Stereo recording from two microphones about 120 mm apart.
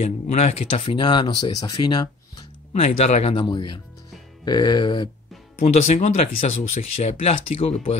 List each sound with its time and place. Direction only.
0.0 s speech: 70° left (ahead or behind); by 2.0 s 35° left (ahead or behind)
2.7 s speech: 65° left (ahead or behind)
3.4 s speech: 40° left (ahead or behind)
5.6 s speech: 75° left (ahead or behind)